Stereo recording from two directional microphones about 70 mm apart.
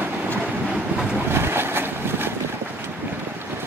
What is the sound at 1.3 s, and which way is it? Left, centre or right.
Vehicle, right.